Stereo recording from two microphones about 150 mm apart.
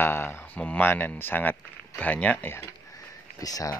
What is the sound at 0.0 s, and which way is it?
Speech, 15° left (ahead or behind).